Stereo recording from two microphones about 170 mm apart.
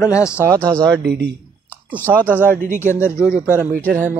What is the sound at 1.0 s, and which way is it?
Speech, 70° right (ahead or behind).